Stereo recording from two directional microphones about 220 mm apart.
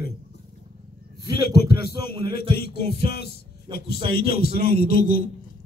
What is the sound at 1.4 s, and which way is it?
Speech, 45° left (ahead or behind).